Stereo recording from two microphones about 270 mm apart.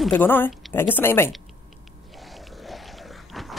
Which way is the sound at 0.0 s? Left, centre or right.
Centre.